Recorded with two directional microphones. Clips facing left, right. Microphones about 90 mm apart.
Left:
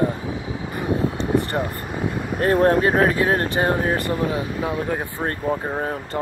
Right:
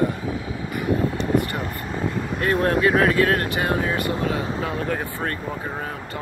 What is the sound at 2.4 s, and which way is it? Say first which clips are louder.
Speech: left 3 dB; 35° left (ahead or behind).